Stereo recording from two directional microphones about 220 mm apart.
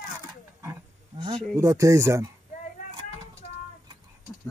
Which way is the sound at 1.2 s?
15° right (ahead or behind).